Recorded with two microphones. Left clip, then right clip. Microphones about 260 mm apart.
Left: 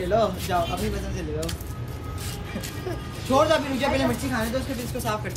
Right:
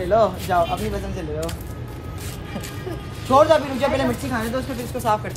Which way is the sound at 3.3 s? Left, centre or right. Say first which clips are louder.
Right 5 dB; centre.